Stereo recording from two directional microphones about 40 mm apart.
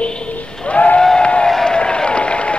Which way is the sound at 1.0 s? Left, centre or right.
Left.